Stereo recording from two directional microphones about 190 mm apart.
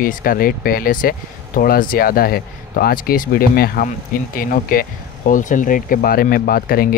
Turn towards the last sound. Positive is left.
turn(degrees=50)  # may be behind; listen again after turning